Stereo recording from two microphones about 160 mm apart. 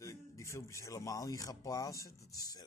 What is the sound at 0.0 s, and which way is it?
Speech, 20° left (ahead or behind).